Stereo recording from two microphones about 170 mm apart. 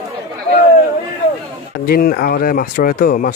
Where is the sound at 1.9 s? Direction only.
60° left (ahead or behind).